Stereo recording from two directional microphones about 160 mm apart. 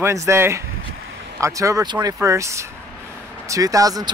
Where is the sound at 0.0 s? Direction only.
20° right (ahead or behind).